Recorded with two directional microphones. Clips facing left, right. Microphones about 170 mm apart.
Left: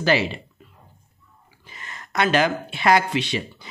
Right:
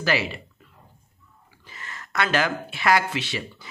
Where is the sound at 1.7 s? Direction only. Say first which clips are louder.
Left 1 dB; 20° left (ahead or behind).